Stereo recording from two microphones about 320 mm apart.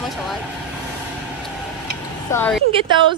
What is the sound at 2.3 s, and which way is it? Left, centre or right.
Speech, centre.